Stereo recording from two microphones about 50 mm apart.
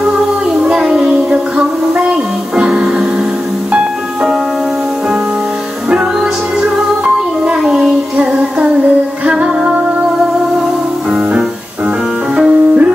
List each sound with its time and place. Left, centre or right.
0.6 s music: centre
7.6 s a sound: centre
8.2 s music: right
11.1 s music: centre
12.4 s music: right